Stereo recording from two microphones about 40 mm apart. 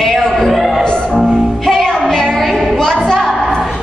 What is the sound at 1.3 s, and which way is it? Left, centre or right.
Music, centre.